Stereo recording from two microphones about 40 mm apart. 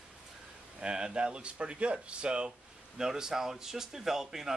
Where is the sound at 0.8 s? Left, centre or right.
Right.